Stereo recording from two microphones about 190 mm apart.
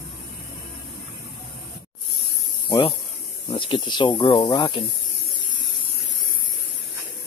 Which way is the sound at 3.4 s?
25° left (ahead or behind).